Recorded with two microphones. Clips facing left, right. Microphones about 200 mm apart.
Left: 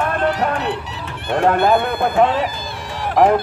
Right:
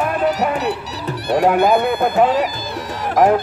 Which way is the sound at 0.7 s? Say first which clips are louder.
Right 2 dB; 40° right (ahead or behind).